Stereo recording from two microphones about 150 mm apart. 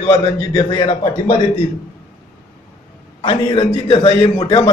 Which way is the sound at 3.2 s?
35° left (ahead or behind).